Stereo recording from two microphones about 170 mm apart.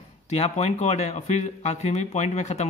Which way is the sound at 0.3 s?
40° left (ahead or behind).